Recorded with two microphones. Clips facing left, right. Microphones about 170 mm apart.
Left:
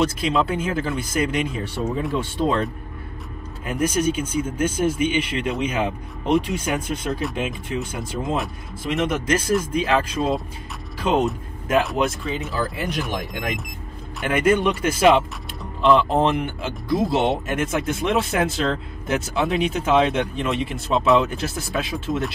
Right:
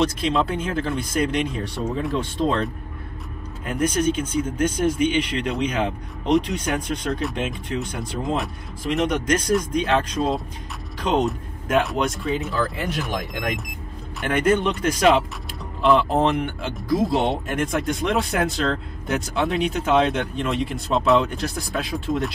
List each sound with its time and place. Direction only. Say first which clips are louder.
0.0 s speech: even; 5° left (ahead or behind)
12.6 s speech: even; 15° left (ahead or behind)
14.2 s speech: left 1 dB; 5° left (ahead or behind)